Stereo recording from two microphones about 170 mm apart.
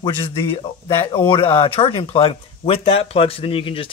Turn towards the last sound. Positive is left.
turn(degrees=30)  # may be behind; listen again after turning